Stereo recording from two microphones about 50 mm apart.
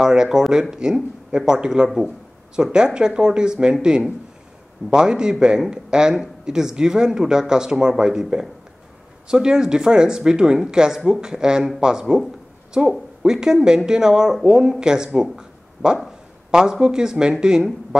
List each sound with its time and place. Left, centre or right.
0.0 s speech: centre
13.2 s speech: centre
15.3 s a sound: centre
16.8 s speech: centre